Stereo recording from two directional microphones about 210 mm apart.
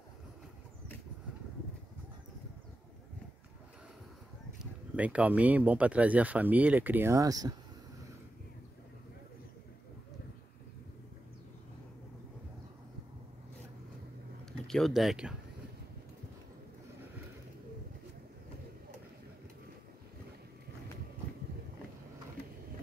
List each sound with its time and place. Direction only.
4.9 s speech: 5° right (ahead or behind)
14.7 s speech: centre (ahead or behind)